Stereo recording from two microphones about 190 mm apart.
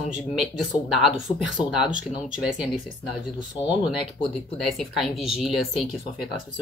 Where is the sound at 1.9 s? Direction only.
40° right (ahead or behind).